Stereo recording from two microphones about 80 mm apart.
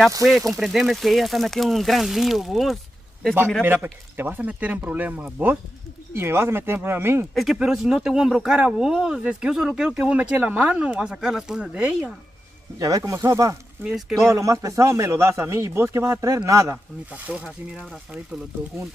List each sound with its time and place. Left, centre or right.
0.2 s speech: centre
3.6 s speech: right
7.5 s speech: centre
12.7 s speech: right
13.8 s speech: centre
14.3 s a man's voice: right
17.1 s speech: centre